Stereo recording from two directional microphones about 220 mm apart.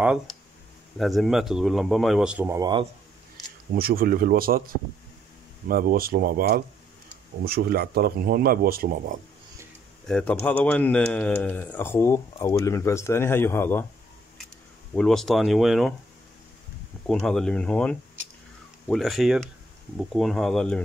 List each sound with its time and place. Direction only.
0.0 s speech: 5° right (ahead or behind)
3.7 s speech: 40° right (ahead or behind)
5.7 s a man's voice: 40° right (ahead or behind)
10.0 s speech: 5° left (ahead or behind)
15.0 s speech: centre (ahead or behind)
17.0 s speech: centre (ahead or behind)